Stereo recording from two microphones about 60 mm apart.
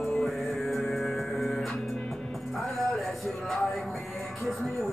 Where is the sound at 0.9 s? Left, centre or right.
Centre.